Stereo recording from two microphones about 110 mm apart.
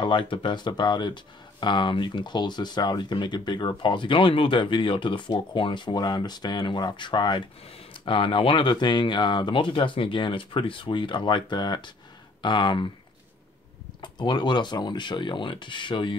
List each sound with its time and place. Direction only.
0.0 s speech: 50° left (ahead or behind)
14.0 s speech: 40° left (ahead or behind)